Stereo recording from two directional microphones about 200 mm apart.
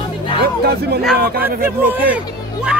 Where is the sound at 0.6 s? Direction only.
50° right (ahead or behind).